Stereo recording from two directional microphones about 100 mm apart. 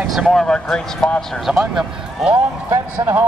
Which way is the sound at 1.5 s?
10° right (ahead or behind).